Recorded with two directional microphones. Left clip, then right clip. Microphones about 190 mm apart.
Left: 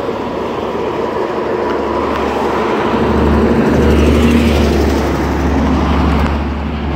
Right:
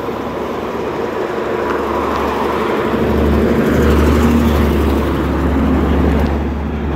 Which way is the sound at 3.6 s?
20° left (ahead or behind).